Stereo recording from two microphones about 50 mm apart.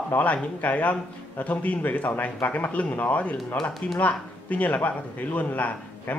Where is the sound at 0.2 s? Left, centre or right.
Left.